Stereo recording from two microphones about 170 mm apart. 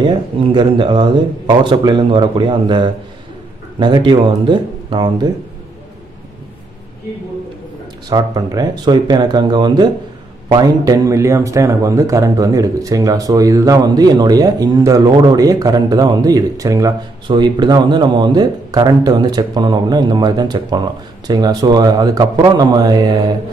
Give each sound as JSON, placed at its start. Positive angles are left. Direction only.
{"t": 0.4, "sound": "a man's voice", "side_deg": -30}
{"t": 8.1, "sound": "a man's voice", "side_deg": -25}